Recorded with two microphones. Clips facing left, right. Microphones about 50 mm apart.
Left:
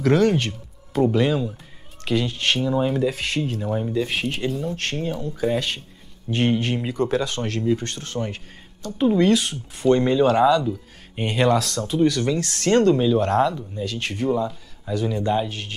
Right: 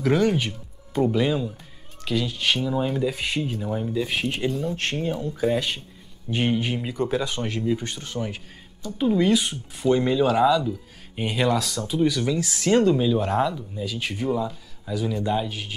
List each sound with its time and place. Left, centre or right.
0.0 s speech: centre
3.7 s speech: centre
4.0 s speech: centre
4.7 s speech: right
6.3 s speech: centre
8.9 s speech: centre
9.2 s speech: centre